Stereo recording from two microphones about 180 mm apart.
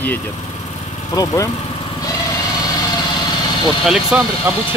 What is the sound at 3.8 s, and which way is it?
Speech, centre (ahead or behind).